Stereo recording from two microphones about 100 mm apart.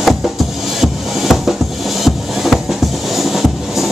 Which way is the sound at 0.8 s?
Centre (ahead or behind).